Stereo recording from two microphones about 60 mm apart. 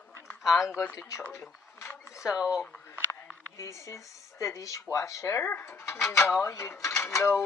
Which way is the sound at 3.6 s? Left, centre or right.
Left.